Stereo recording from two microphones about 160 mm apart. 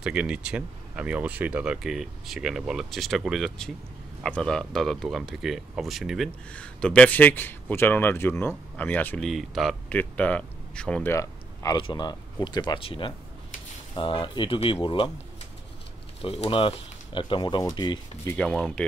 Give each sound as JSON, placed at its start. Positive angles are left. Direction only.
{"t": 0.0, "sound": "speech", "side_deg": -5}
{"t": 16.2, "sound": "speech", "side_deg": 35}
{"t": 18.3, "sound": "speech", "side_deg": 5}